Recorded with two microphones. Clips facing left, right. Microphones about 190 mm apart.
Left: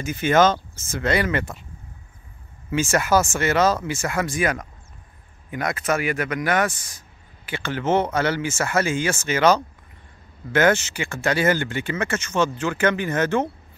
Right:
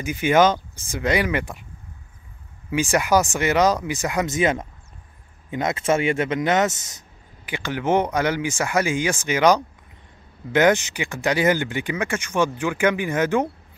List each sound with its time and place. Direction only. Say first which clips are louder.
0.0 s speech: even; 15° right (ahead or behind)
2.7 s speech: even; 15° right (ahead or behind)